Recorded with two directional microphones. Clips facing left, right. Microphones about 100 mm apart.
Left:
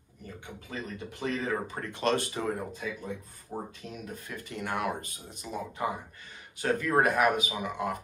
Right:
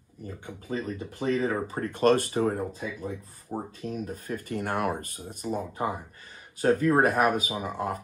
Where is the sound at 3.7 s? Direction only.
40° right (ahead or behind).